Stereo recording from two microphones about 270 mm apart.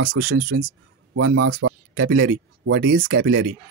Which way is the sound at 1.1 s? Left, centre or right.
Right.